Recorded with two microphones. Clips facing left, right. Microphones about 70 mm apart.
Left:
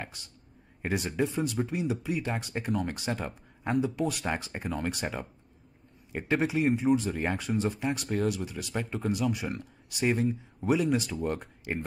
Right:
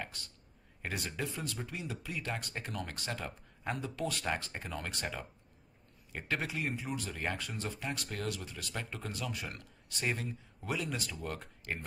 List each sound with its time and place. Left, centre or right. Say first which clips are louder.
0.8 s speech: left 9 dB; centre